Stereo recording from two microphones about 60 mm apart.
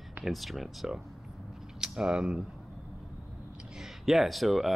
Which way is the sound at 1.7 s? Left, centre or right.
Centre.